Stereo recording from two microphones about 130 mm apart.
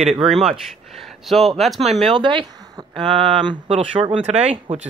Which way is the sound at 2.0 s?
40° right (ahead or behind).